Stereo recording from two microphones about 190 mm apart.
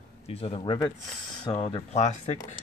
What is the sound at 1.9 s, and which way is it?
Speech, 35° left (ahead or behind).